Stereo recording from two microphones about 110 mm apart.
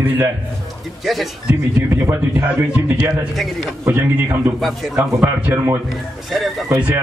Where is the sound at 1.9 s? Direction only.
25° right (ahead or behind).